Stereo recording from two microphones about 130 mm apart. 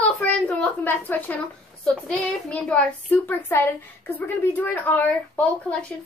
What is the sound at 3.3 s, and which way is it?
A woman's voice, 15° left (ahead or behind).